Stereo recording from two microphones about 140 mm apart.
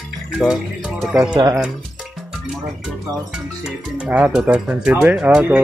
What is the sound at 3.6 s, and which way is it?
Speech, 10° right (ahead or behind).